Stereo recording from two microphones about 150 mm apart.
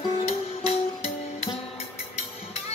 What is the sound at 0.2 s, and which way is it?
Music, 45° left (ahead or behind).